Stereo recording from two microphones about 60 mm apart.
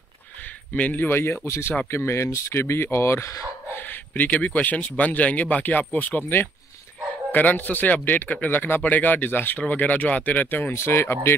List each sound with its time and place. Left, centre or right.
0.7 s speech: left
1.0 s speech: left
4.1 s speech: left
7.3 s speech: left
10.7 s speech: left